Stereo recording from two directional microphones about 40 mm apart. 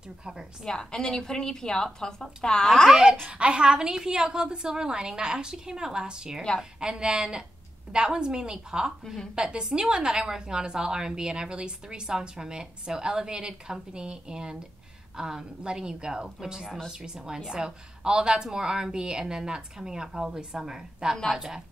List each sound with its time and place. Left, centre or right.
0.2 s a woman's voice: centre
0.7 s a woman's voice: centre
3.3 s a woman's voice: right
9.0 s a woman's voice: centre
9.3 s a woman's voice: right